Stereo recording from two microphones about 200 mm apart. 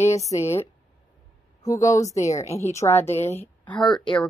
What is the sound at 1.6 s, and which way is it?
Speech, 15° left (ahead or behind).